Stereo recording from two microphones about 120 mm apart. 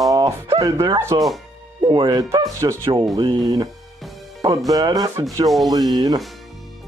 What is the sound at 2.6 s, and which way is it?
Speech, 25° right (ahead or behind).